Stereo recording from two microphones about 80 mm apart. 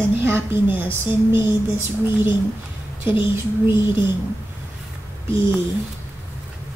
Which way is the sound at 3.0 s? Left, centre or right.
Right.